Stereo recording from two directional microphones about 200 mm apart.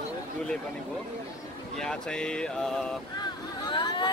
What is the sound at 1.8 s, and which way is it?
Speech, 5° left (ahead or behind).